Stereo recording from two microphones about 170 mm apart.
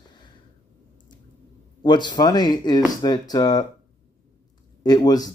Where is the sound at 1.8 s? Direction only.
25° left (ahead or behind).